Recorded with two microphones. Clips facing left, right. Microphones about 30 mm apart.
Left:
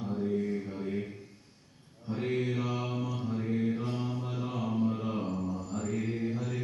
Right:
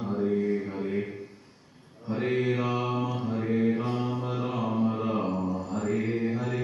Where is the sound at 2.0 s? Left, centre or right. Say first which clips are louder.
Right 5 dB; right.